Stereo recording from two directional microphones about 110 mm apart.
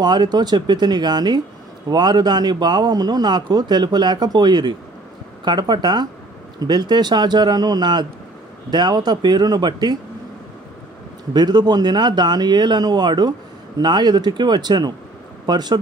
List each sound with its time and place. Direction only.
0.0 s a man's voice: 40° right (ahead or behind)
11.3 s a man's voice: 40° right (ahead or behind)